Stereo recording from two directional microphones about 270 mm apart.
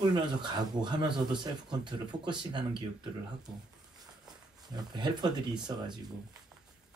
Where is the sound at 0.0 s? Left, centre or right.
Centre.